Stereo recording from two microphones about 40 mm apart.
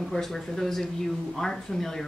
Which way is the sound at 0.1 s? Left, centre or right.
Centre.